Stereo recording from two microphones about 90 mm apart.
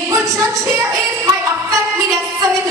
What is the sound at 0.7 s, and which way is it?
Speech, 35° right (ahead or behind).